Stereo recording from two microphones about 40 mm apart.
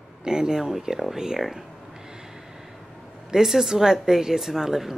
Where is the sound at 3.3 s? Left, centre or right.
Centre.